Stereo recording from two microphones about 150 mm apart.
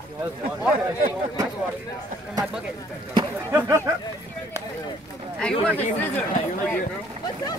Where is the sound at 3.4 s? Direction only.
15° right (ahead or behind).